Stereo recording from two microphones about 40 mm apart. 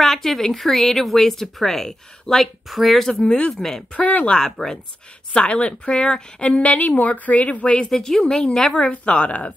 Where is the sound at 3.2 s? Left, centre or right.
Left.